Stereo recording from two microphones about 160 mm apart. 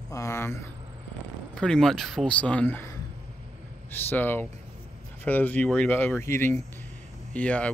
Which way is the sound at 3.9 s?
10° left (ahead or behind).